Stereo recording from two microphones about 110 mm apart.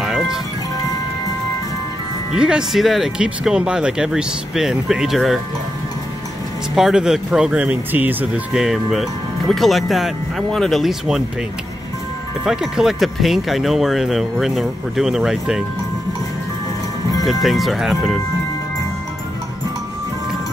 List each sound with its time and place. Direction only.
0.0 s music: 5° right (ahead or behind)
2.3 s speech: 5° right (ahead or behind)
6.7 s speech: 5° right (ahead or behind)
8.5 s speech: centre (ahead or behind)
12.4 s speech: 5° right (ahead or behind)
17.2 s speech: centre (ahead or behind)